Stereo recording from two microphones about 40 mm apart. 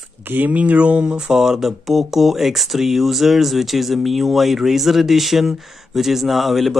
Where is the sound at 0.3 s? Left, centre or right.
Right.